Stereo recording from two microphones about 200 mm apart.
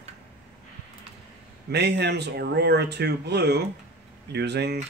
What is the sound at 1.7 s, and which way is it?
Speech, 55° right (ahead or behind).